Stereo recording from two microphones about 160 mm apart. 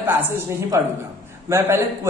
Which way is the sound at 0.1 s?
15° right (ahead or behind).